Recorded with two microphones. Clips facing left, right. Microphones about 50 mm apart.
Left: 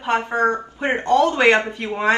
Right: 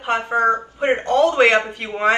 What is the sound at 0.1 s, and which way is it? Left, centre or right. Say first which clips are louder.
Speech: right 1 dB; right.